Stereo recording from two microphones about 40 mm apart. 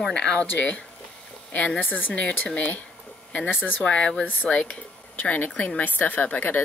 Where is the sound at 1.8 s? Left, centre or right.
Left.